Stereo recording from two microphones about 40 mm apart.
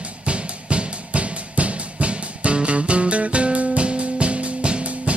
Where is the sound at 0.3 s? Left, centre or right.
Right.